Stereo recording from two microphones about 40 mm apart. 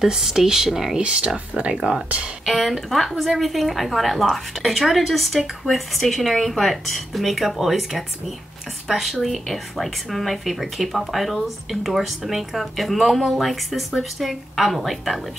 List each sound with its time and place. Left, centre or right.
0.0 s speech: centre
0.9 s speech: right
1.8 s speech: centre
2.4 s speech: centre